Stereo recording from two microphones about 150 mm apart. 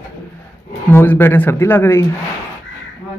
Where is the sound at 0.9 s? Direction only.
15° left (ahead or behind).